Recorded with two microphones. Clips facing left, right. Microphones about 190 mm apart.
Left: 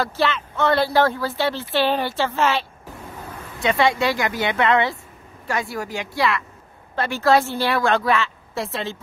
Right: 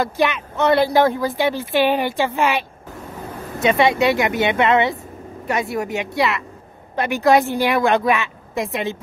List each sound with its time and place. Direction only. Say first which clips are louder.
0.0 s speech: right 2 dB; 15° right (ahead or behind)
3.6 s speech: right 3 dB; 20° right (ahead or behind)